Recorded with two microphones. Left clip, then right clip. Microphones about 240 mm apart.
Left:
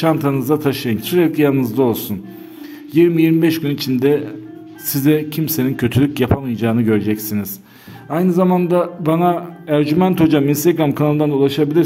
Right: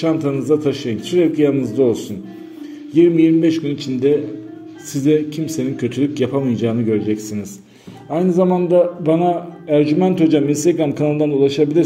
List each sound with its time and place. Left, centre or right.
0.0 s a man's voice: left